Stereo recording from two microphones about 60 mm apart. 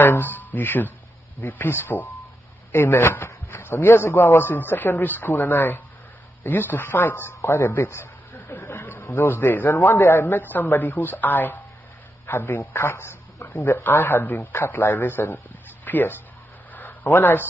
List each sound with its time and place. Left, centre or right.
0.0 s a sound: left
1.5 s a man's voice: left
12.3 s speech: left
13.7 s a man's voice: left
15.8 s a man's voice: left